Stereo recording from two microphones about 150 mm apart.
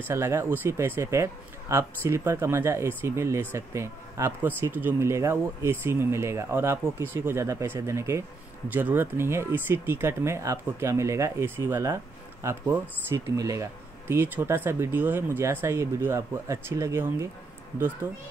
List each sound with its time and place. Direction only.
0.1 s a man's voice: 20° right (ahead or behind)